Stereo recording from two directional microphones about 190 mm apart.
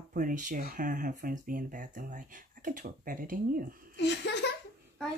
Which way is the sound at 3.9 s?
65° left (ahead or behind).